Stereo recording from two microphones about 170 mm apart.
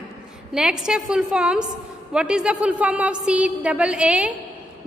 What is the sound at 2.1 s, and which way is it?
A woman's voice, 5° right (ahead or behind).